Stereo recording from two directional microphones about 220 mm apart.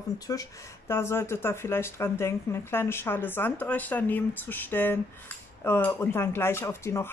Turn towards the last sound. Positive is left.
turn(degrees=10)  # may be behind; listen again after turning